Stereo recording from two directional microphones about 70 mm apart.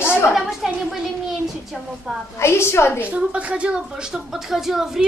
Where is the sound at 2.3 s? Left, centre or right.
Left.